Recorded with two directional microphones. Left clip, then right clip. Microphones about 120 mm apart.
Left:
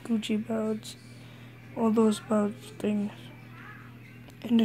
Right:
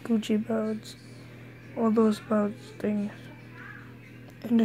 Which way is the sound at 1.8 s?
25° left (ahead or behind).